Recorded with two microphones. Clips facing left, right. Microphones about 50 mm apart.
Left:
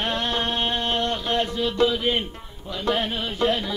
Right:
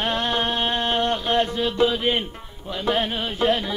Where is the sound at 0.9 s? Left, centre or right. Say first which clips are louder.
Right 3 dB; right.